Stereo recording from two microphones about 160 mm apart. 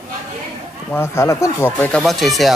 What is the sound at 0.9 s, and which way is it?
Speech, 15° left (ahead or behind).